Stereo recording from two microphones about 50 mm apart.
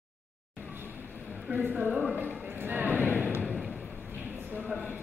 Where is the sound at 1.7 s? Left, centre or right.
Right.